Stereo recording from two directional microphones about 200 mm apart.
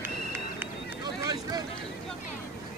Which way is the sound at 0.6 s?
20° right (ahead or behind).